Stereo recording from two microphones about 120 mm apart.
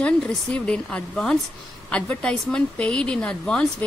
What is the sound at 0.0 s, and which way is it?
A woman's voice, 10° left (ahead or behind).